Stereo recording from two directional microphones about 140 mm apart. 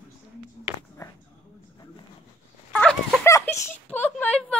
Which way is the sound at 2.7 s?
5° left (ahead or behind).